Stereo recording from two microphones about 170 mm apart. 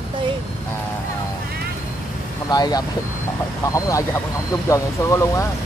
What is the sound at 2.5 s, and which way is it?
Speech, 25° left (ahead or behind).